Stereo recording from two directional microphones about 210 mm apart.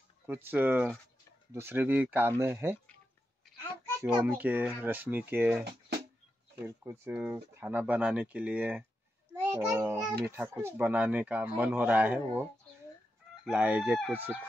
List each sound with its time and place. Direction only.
0.3 s speech: 10° right (ahead or behind)
4.3 s speech: 10° right (ahead or behind)
5.6 s speech: 50° right (ahead or behind)
6.6 s a child's voice: 10° right (ahead or behind)
13.4 s chicken: 5° right (ahead or behind)